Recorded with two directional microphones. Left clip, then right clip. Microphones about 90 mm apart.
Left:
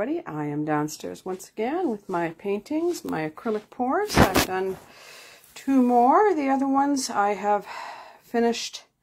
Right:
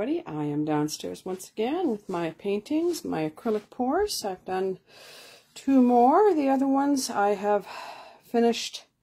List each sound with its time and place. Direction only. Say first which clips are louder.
0.0 s speech: left 1 dB; 20° right (ahead or behind)
5.7 s speech: left 1 dB; 30° right (ahead or behind)